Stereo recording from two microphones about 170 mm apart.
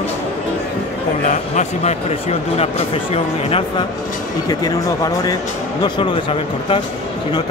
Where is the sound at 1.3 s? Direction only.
40° left (ahead or behind).